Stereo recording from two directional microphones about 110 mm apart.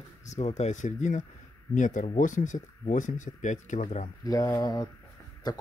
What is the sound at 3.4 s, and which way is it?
Speech, 90° left.